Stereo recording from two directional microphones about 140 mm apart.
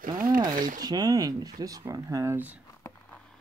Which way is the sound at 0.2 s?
90° right.